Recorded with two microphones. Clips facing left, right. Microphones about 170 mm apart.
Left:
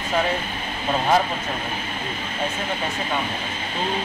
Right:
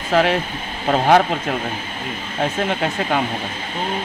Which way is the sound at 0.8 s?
70° right (ahead or behind).